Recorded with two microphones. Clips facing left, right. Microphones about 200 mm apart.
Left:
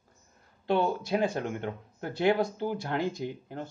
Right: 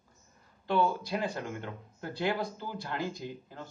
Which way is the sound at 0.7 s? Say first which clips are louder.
Left 2 dB; 55° left (ahead or behind).